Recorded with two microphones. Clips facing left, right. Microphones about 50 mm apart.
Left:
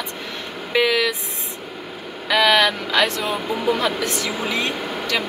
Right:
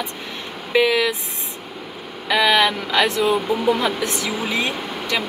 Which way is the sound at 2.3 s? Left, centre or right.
Centre.